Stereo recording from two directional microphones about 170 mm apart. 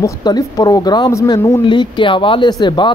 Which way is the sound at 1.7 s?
30° left (ahead or behind).